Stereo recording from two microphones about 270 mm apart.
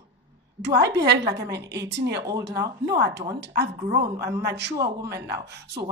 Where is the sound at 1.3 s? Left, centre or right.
Centre.